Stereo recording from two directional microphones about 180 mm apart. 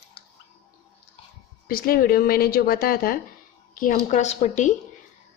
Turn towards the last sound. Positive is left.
turn(degrees=40)  # may be behind; listen again after turning